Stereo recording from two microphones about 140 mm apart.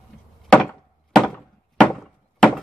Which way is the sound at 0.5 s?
5° left (ahead or behind).